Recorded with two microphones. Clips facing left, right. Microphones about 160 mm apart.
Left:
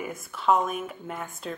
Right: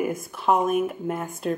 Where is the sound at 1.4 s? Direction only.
55° right (ahead or behind).